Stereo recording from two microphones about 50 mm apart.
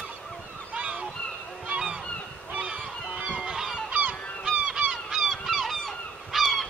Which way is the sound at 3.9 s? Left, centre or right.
Right.